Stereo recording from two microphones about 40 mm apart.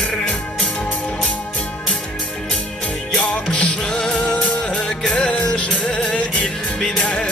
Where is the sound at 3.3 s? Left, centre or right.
Left.